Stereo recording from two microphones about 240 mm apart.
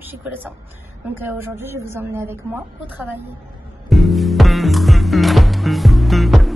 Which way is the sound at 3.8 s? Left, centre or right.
Centre.